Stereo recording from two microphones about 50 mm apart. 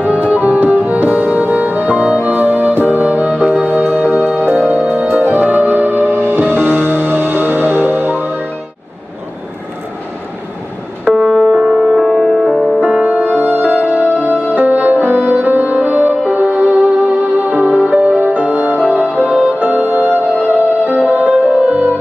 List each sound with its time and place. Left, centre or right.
0.0 s music: right
11.1 s music: centre
11.4 s music: centre
12.0 s music: centre
13.4 s music: right
20.8 s music: right